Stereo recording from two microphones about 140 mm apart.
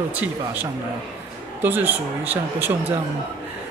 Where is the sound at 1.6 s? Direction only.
15° right (ahead or behind).